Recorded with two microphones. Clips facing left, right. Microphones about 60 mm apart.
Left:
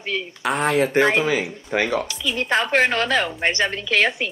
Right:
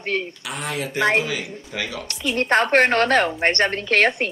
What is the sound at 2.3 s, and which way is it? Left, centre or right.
A woman's voice, right.